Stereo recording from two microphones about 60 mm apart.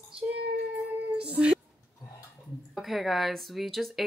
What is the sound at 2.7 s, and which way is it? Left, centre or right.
A woman's voice, centre.